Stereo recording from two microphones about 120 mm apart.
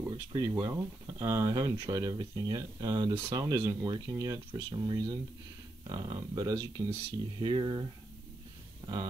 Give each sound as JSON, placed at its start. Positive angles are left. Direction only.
{"t": 0.3, "sound": "speech", "side_deg": -30}
{"t": 7.3, "sound": "speech", "side_deg": -40}